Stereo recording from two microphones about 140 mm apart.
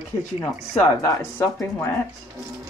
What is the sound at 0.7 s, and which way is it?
Speech, 15° left (ahead or behind).